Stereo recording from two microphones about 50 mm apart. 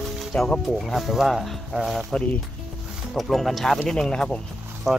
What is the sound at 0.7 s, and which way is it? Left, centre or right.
Speech, centre.